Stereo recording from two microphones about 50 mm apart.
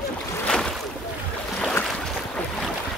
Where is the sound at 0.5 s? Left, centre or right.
Centre.